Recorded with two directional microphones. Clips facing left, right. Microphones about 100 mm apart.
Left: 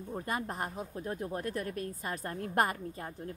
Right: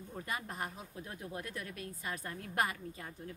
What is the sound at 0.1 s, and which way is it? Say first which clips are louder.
A woman's voice: left 6 dB; 40° left (ahead or behind).